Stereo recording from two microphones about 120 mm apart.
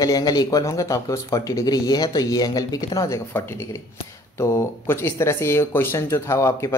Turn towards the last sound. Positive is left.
turn(degrees=25)  # may be behind; listen again after turning